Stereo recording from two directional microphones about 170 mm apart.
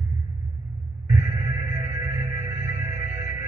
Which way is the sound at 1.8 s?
20° right (ahead or behind).